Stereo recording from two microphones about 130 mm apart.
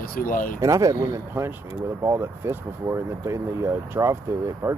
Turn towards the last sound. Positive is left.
turn(degrees=-20)  # may be behind; listen again after turning